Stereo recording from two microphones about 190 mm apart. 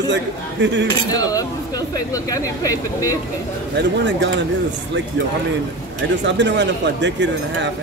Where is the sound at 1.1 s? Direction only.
20° left (ahead or behind).